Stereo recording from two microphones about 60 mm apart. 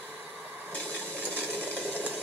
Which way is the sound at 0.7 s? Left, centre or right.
Centre.